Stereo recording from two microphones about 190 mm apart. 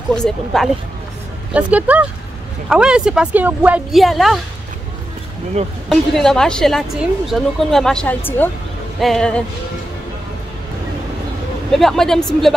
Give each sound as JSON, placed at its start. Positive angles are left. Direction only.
{"t": 0.1, "sound": "a woman's voice", "side_deg": 5}
{"t": 1.5, "sound": "a woman's voice", "side_deg": -5}
{"t": 5.9, "sound": "a woman's voice", "side_deg": 0}
{"t": 11.7, "sound": "a woman's voice", "side_deg": 0}